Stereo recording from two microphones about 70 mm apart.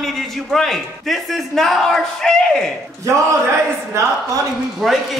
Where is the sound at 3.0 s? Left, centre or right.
Right.